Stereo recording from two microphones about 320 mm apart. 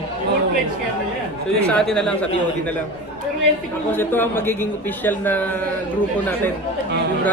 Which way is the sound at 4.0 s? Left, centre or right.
Centre.